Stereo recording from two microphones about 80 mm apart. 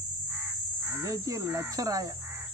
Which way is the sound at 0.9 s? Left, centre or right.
Right.